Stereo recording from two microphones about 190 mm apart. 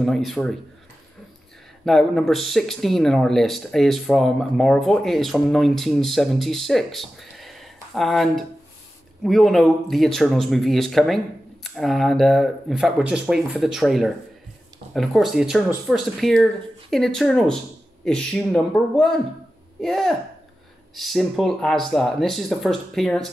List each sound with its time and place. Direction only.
0.0 s speech: centre (ahead or behind)
1.9 s speech: centre (ahead or behind)